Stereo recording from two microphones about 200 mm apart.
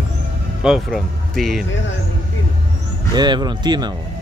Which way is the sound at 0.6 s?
Centre (ahead or behind).